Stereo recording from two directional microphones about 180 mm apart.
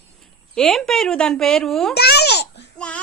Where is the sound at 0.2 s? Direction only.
5° left (ahead or behind).